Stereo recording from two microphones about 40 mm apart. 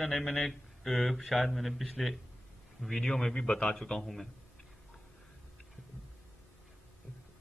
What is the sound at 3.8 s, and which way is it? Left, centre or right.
Speech, centre.